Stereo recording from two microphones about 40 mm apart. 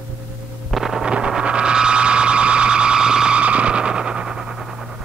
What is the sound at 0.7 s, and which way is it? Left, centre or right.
Wind noise, centre.